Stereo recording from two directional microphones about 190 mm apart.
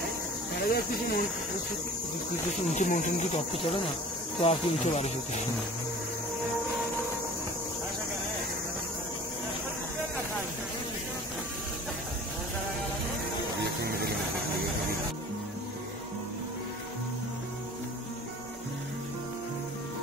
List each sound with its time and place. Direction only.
0.6 s speech: 55° left (ahead or behind)
2.7 s speech: 45° left (ahead or behind)
4.4 s speech: 30° left (ahead or behind)
13.6 s a sound: 55° right (ahead or behind)